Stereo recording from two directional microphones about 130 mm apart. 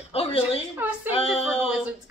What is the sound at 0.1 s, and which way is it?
Speech, 50° left (ahead or behind).